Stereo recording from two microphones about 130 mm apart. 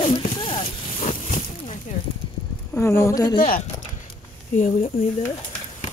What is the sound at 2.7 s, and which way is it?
Speech, 15° left (ahead or behind).